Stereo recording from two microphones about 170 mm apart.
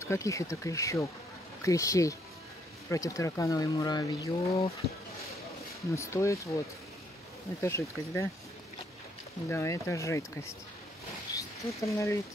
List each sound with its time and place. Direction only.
0.0 s speech: 15° left (ahead or behind)
5.9 s speech: 15° left (ahead or behind)
7.6 s speech: 15° left (ahead or behind)
9.5 s speech: 15° left (ahead or behind)
11.3 s speech: 20° left (ahead or behind)